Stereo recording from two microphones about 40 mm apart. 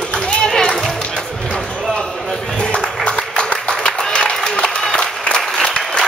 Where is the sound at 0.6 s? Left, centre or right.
Centre.